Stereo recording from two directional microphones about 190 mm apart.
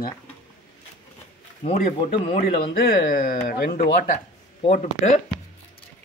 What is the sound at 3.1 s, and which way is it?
Speech, 50° left (ahead or behind).